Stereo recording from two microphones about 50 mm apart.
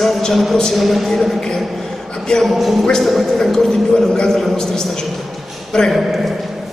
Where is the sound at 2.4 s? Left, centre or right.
Centre.